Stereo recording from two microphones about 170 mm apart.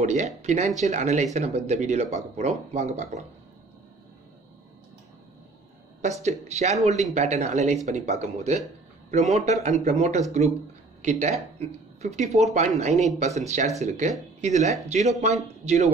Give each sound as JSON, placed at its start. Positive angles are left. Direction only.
{"t": 0.0, "sound": "speech", "side_deg": -40}
{"t": 5.9, "sound": "speech", "side_deg": -40}